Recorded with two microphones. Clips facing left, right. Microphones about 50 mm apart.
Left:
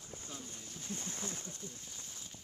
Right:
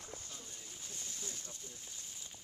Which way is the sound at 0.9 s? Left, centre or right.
Left.